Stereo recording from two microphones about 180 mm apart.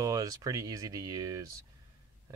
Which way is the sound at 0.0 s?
20° right (ahead or behind).